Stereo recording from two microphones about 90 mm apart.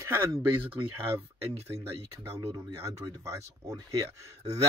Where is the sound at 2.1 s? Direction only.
30° right (ahead or behind).